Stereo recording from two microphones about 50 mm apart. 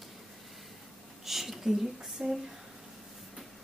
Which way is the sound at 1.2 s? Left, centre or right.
Centre.